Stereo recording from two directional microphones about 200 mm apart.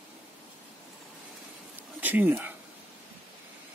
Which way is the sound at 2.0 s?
10° right (ahead or behind).